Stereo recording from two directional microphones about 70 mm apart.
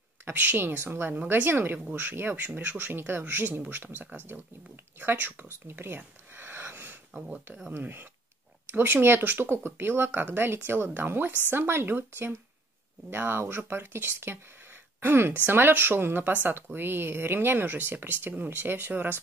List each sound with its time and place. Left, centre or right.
0.2 s speech: right
5.5 s a sound: right
7.7 s speech: right